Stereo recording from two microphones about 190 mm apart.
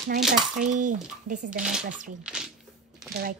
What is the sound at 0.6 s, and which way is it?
Speech, 40° right (ahead or behind).